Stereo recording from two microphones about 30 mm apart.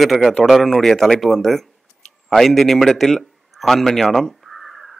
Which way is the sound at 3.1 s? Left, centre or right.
Centre.